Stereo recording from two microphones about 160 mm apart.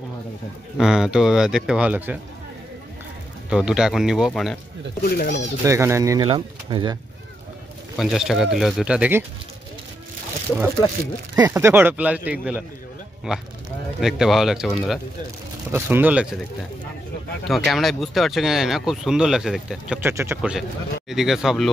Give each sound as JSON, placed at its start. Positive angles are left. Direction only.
{"t": 0.7, "sound": "speech", "side_deg": -5}
{"t": 3.4, "sound": "speech", "side_deg": -5}
{"t": 5.0, "sound": "speech", "side_deg": 65}
{"t": 5.6, "sound": "speech", "side_deg": -15}
{"t": 6.2, "sound": "speech", "side_deg": -30}
{"t": 8.0, "sound": "speech", "side_deg": 0}
{"t": 11.3, "sound": "speech", "side_deg": -15}
{"t": 15.7, "sound": "speech", "side_deg": -10}
{"t": 17.5, "sound": "speech", "side_deg": 0}
{"t": 20.0, "sound": "speech", "side_deg": -15}
{"t": 21.1, "sound": "speech", "side_deg": 0}